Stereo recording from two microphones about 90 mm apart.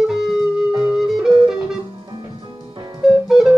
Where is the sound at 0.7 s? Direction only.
50° right (ahead or behind).